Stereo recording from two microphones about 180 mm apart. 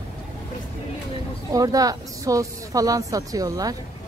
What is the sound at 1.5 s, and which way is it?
A woman's voice, 20° right (ahead or behind).